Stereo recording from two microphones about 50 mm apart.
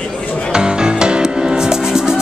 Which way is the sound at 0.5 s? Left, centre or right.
Centre.